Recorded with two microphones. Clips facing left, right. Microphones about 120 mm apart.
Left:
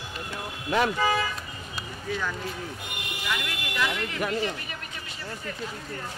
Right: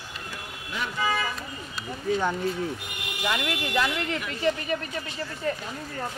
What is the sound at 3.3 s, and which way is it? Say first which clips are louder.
Speech: right 5 dB; 40° right (ahead or behind).